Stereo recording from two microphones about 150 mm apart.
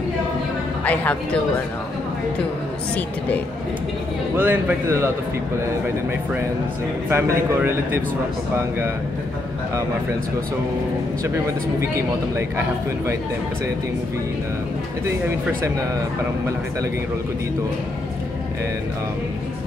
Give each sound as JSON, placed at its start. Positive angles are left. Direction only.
{"t": 0.8, "sound": "speech", "side_deg": 10}
{"t": 4.4, "sound": "a man's voice", "side_deg": -15}
{"t": 7.1, "sound": "a man's voice", "side_deg": -15}
{"t": 12.4, "sound": "a man's voice", "side_deg": -20}